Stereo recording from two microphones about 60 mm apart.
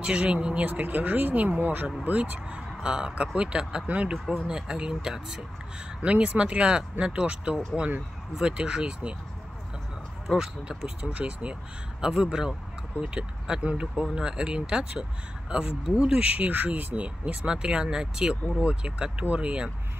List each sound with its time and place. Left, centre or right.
0.0 s speech: centre
10.2 s speech: centre
11.0 s speech: right
12.0 s speech: centre